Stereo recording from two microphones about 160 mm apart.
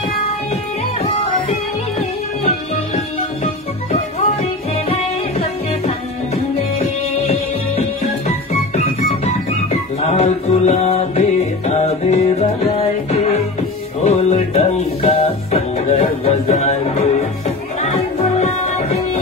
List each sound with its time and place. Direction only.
1.0 s music: 40° left (ahead or behind)
3.9 s music: 40° left (ahead or behind)
8.7 s music: 40° left (ahead or behind)